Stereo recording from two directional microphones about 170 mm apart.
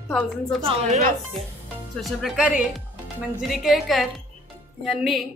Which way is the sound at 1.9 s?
Centre (ahead or behind).